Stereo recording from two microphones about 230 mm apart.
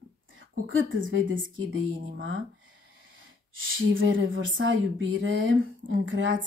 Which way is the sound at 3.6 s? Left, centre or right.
Right.